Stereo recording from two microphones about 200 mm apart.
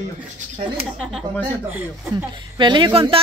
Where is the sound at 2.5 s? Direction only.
25° right (ahead or behind).